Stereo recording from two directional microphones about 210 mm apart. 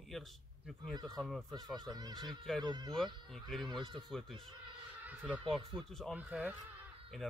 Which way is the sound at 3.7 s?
20° right (ahead or behind).